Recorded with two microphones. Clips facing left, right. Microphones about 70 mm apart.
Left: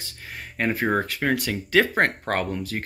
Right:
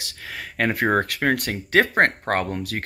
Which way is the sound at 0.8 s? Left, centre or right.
Right.